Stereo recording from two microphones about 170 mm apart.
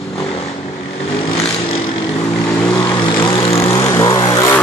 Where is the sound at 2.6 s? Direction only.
15° left (ahead or behind).